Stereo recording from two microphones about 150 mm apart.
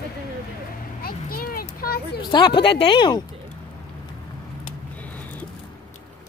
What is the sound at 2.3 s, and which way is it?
Speech, 30° left (ahead or behind).